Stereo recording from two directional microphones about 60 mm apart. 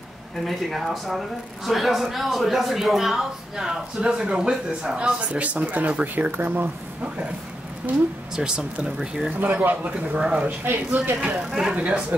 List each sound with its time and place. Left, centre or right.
0.5 s a man's voice: centre; by 7.1 s right
8.4 s a man's voice: centre
9.4 s a man's voice: right
10.1 s a man's voice: centre
10.6 s speech: right
11.7 s a man's voice: right